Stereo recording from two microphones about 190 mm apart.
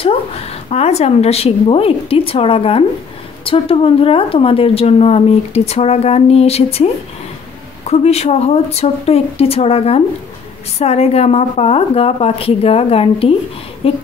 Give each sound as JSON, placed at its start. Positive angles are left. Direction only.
{"t": 0.7, "sound": "a woman's voice", "side_deg": 35}
{"t": 7.9, "sound": "a woman's voice", "side_deg": 35}